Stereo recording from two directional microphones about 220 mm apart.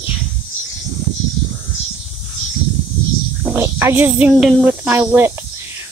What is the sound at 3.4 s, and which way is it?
Speech, 10° right (ahead or behind).